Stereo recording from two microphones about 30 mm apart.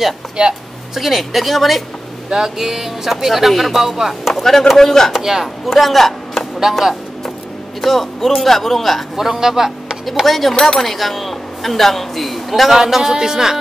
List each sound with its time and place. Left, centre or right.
0.9 s a woman's voice: centre
2.3 s speech: centre
3.7 s speech: centre
4.3 s a man's voice: centre
5.1 s speech: centre
5.7 s a man's voice: centre
6.7 s speech: centre
7.8 s a woman's voice: centre
9.1 s speech: centre
10.2 s a woman's voice: centre